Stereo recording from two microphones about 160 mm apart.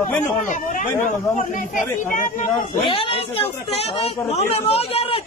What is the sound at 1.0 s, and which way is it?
A man's voice, 50° left (ahead or behind).